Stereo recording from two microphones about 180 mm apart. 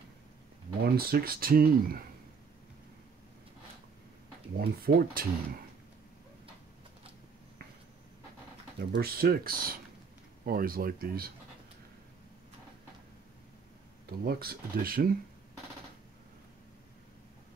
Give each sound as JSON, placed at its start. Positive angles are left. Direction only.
{"t": 0.9, "sound": "speech", "side_deg": -55}
{"t": 4.6, "sound": "speech", "side_deg": -55}
{"t": 8.7, "sound": "speech", "side_deg": -60}
{"t": 14.2, "sound": "speech", "side_deg": -60}